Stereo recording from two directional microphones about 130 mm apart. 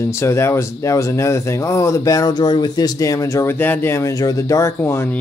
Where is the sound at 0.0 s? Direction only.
20° left (ahead or behind).